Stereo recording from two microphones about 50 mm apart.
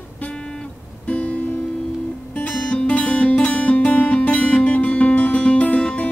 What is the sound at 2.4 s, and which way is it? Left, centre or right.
Music, left.